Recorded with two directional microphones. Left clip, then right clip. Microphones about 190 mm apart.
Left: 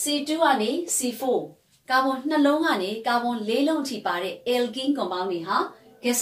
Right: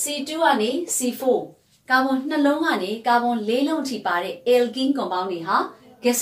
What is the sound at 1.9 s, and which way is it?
A woman's voice, 15° left (ahead or behind).